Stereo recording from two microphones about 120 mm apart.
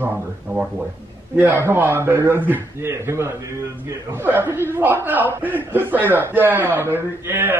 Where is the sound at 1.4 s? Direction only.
20° right (ahead or behind).